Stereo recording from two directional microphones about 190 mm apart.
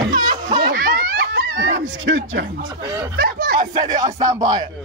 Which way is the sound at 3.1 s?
55° right (ahead or behind).